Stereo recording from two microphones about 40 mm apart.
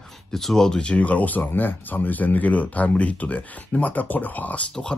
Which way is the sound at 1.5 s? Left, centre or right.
Left.